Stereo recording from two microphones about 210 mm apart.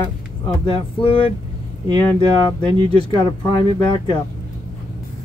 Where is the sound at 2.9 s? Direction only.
20° left (ahead or behind).